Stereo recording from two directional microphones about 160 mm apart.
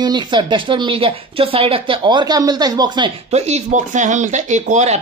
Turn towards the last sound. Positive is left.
turn(degrees=-45)  # may be behind; listen again after turning